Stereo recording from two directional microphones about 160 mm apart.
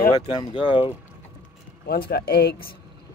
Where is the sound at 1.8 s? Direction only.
80° left.